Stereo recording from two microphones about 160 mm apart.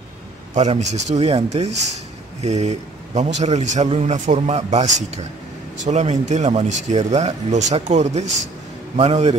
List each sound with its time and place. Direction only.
0.6 s a man's voice: 45° right (ahead or behind)